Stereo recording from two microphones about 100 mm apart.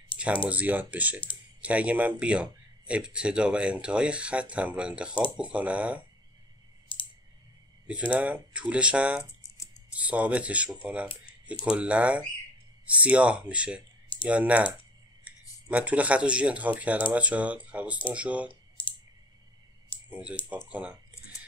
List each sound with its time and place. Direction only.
0.5 s a man's voice: 15° right (ahead or behind)
6.9 s clicking: 60° left (ahead or behind)
7.8 s a man's voice: 10° right (ahead or behind)
18.8 s clicking: 60° left (ahead or behind)
20.1 s a man's voice: 15° right (ahead or behind)